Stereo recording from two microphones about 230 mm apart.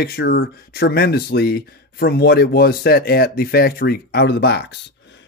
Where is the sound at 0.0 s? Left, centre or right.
Left.